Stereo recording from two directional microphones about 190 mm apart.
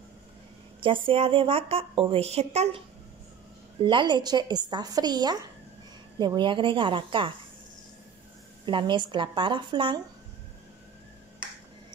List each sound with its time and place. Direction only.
0.7 s a woman's voice: 25° right (ahead or behind)
3.8 s a woman's voice: 25° right (ahead or behind)
8.6 s a woman's voice: 25° right (ahead or behind)